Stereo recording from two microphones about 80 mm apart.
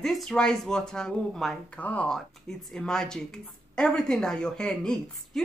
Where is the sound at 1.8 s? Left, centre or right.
Centre.